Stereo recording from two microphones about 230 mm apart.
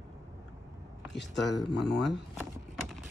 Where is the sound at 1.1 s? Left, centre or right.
Left.